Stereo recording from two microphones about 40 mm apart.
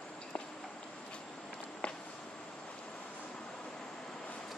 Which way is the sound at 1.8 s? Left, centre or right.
Left.